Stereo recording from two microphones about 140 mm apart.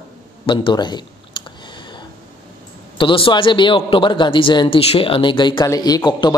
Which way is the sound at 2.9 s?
40° left (ahead or behind).